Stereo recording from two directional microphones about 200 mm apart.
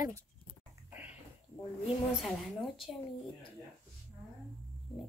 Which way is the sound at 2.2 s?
Centre (ahead or behind).